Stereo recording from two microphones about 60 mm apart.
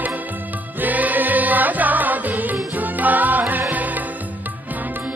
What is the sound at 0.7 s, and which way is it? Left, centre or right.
Music, right.